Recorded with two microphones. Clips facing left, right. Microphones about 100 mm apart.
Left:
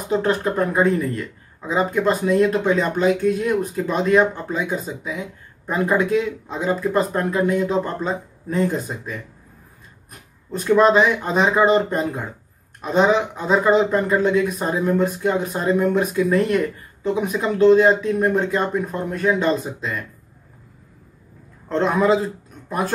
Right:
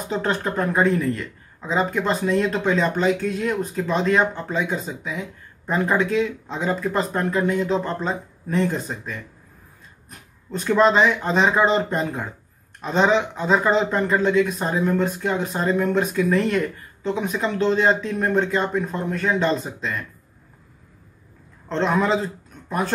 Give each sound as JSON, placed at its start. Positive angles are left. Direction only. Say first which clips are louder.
{"t": 0.1, "sound": "speech", "louder": "left 4 dB", "side_deg": 5}
{"t": 10.5, "sound": "speech", "louder": "left 2 dB", "side_deg": 5}
{"t": 21.6, "sound": "a man's voice", "louder": "left 3 dB", "side_deg": 10}